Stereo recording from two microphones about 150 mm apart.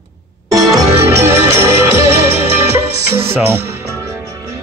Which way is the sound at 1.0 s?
15° right (ahead or behind).